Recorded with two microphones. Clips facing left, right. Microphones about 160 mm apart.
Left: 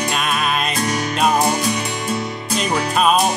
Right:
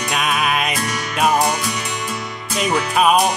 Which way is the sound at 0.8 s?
30° left (ahead or behind).